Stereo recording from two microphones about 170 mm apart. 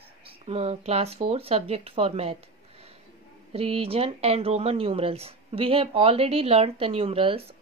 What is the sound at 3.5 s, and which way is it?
Speech, 35° right (ahead or behind).